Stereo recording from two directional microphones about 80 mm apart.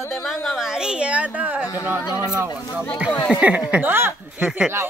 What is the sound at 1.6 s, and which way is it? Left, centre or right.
Speech, left.